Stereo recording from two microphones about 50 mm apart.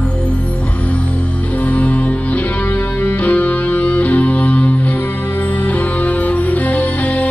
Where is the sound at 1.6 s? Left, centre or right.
Left.